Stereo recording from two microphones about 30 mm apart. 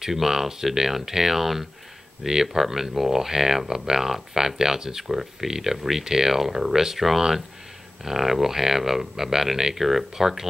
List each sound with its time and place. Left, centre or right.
0.0 s speech: centre